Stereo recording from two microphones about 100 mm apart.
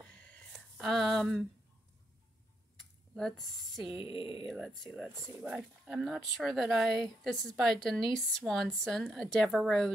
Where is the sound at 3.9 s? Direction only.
65° left (ahead or behind).